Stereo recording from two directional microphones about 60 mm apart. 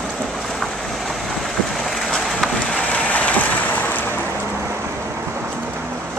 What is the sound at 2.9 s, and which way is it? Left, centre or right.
Vehicle, left.